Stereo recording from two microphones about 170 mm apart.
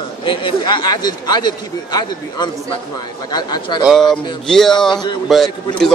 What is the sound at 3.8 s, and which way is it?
Speech, centre (ahead or behind).